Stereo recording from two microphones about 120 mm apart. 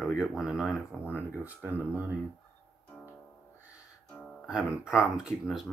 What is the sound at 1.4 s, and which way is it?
Speech, 15° right (ahead or behind).